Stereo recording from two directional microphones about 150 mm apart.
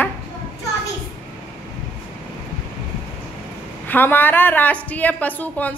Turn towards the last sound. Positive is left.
turn(degrees=10)  # may be behind; listen again after turning